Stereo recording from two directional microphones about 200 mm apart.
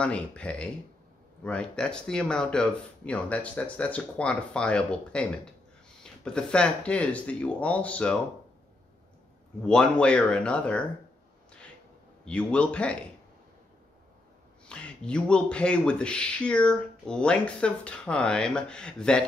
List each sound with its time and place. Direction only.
0.0 s speech: 5° left (ahead or behind)
6.2 s speech: 5° left (ahead or behind)
9.6 s speech: 5° left (ahead or behind)
12.3 s speech: 5° left (ahead or behind)
14.7 s speech: 5° left (ahead or behind)